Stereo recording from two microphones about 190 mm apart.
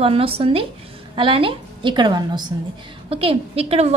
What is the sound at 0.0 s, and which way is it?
A woman's voice, 30° right (ahead or behind).